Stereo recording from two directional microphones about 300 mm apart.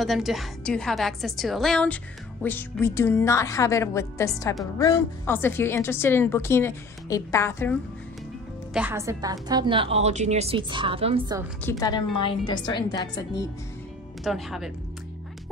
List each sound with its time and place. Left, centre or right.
0.0 s a woman's voice: centre
8.7 s a woman's voice: centre
11.6 s a woman's voice: centre
14.2 s a woman's voice: centre